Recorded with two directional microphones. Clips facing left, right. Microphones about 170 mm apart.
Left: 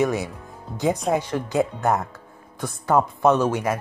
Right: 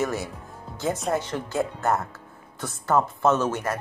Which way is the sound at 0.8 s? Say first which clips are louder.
Left 4 dB; centre (ahead or behind).